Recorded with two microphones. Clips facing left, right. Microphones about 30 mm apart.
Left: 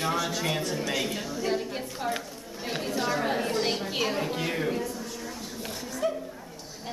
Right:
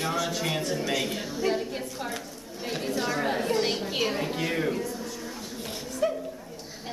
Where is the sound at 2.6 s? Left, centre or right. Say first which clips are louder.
Even; centre.